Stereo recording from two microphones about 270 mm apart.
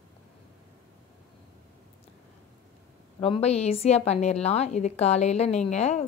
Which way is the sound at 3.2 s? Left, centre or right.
Left.